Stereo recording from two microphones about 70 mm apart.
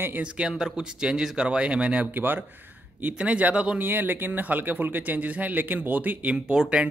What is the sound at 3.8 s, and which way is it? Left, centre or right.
A man's voice, right.